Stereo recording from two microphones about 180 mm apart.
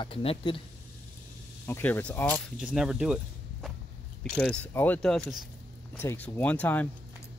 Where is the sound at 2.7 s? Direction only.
5° right (ahead or behind).